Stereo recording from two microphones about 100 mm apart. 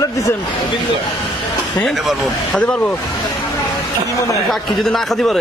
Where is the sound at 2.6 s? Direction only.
10° left (ahead or behind).